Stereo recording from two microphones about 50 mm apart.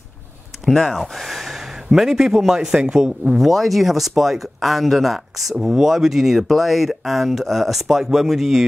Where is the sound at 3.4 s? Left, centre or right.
Centre.